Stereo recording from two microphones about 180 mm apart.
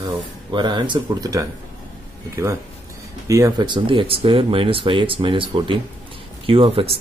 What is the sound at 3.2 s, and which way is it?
Speech, 20° right (ahead or behind).